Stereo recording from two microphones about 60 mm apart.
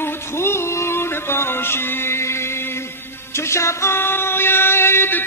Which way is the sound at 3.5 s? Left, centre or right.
Left.